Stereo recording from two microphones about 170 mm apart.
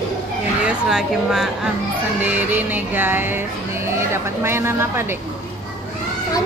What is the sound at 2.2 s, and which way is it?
Speech, 10° right (ahead or behind).